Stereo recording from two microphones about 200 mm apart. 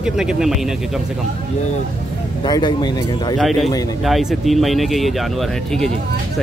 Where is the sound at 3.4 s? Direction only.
Centre (ahead or behind).